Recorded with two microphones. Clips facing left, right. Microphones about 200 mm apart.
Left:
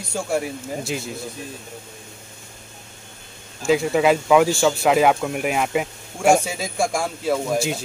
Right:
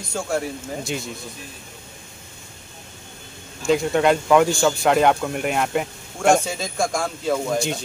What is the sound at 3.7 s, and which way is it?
Speech, 5° left (ahead or behind).